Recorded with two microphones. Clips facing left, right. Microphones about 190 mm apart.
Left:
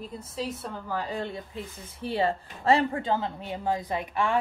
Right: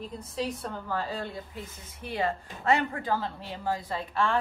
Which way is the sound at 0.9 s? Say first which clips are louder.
Left 2 dB; 20° left (ahead or behind).